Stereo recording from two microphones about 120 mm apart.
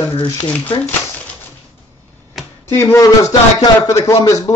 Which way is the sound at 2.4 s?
Centre (ahead or behind).